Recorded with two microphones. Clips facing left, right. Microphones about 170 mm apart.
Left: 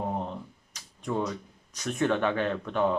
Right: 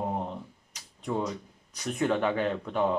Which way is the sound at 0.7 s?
15° right (ahead or behind).